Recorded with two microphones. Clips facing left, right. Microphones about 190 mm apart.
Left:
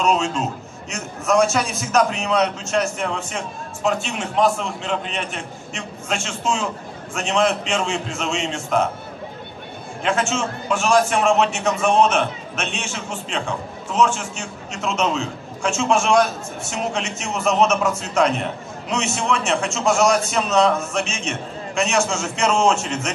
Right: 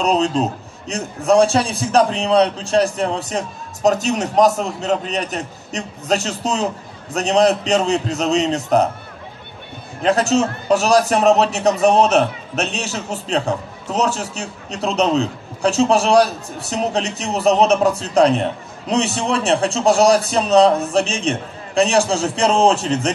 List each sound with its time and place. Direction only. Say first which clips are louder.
0.0 s a man's voice: right 3 dB; 35° right (ahead or behind)
10.0 s a man's voice: right 6 dB; 40° right (ahead or behind)